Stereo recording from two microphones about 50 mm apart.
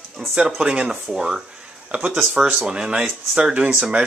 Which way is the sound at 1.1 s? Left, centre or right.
Centre.